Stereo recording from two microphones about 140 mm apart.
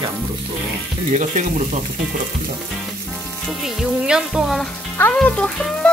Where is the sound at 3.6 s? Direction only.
5° right (ahead or behind).